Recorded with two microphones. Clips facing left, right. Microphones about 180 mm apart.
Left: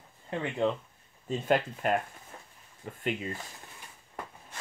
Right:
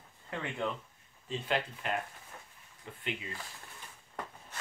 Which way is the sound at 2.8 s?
45° left (ahead or behind).